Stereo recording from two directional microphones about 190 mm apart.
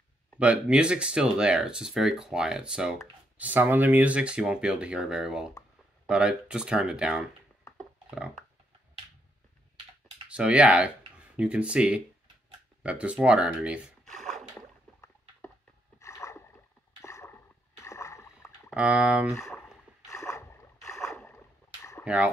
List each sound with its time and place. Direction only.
0.4 s speech: 5° right (ahead or behind)
8.1 s a sound: 5° right (ahead or behind)
10.3 s speech: 5° right (ahead or behind)
12.8 s a sound: 5° right (ahead or behind)
16.0 s rowboat: 15° left (ahead or behind)
17.0 s a sound: 15° left (ahead or behind)
17.8 s rowboat: 15° left (ahead or behind)
18.7 s speech: 5° right (ahead or behind)
19.3 s speech: 15° left (ahead or behind)
20.1 s boat: 15° left (ahead or behind)
20.9 s boat: centre (ahead or behind)
22.0 s speech: 5° right (ahead or behind)